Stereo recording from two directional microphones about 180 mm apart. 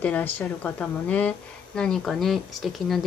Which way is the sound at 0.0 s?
10° left (ahead or behind).